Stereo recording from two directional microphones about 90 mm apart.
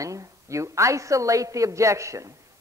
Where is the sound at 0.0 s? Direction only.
35° right (ahead or behind).